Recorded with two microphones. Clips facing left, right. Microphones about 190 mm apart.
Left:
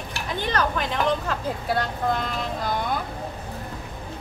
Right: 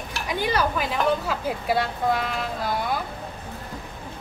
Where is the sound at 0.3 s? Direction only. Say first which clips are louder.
Right 1 dB; 10° right (ahead or behind).